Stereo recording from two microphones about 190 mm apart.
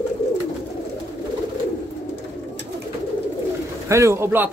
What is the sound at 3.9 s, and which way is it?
Speech, 15° right (ahead or behind).